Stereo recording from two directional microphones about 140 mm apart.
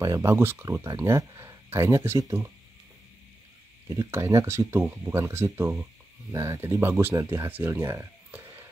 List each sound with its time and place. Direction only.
0.0 s speech: 20° right (ahead or behind)
3.9 s speech: 20° right (ahead or behind)